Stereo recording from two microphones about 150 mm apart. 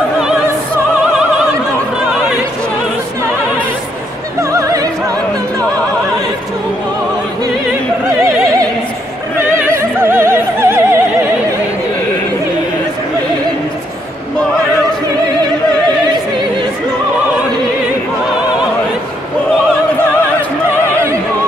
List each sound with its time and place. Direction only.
4.4 s opera: 20° right (ahead or behind)
9.4 s opera: 15° right (ahead or behind)